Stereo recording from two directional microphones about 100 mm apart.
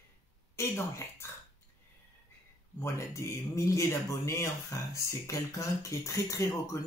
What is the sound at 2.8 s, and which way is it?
Speech, 30° left (ahead or behind).